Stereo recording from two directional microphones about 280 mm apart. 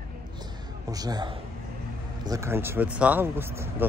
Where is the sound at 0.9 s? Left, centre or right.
Centre.